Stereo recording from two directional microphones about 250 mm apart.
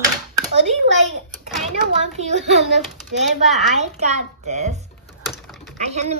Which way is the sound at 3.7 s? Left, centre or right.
Right.